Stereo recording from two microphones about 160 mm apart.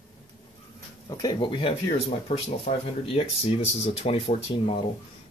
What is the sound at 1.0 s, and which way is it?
Speech, 25° left (ahead or behind).